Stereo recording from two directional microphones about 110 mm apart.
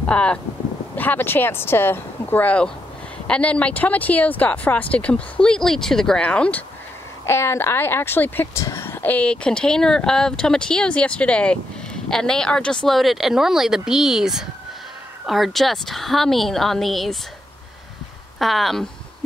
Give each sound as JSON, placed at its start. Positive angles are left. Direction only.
{"t": 0.0, "sound": "speech", "side_deg": 10}
{"t": 7.2, "sound": "speech", "side_deg": 25}
{"t": 18.4, "sound": "speech", "side_deg": 0}